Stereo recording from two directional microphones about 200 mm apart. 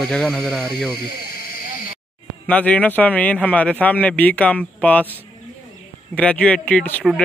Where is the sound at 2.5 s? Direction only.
5° left (ahead or behind).